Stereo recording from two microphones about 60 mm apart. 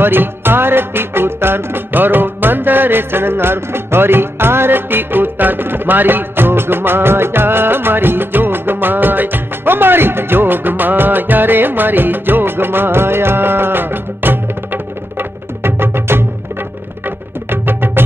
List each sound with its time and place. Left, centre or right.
0.0 s music: right